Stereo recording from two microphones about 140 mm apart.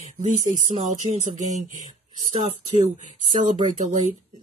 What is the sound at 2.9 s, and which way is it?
Speech, 55° right (ahead or behind).